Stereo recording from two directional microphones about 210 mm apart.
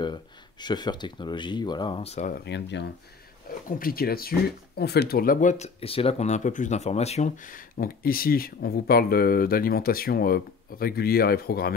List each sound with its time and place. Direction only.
0.0 s speech: 20° left (ahead or behind)
2.3 s speech: 55° left (ahead or behind)